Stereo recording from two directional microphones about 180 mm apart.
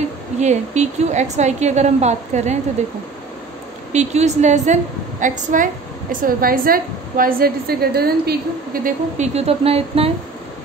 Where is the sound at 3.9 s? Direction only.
40° right (ahead or behind); by 8.4 s 60° right (ahead or behind).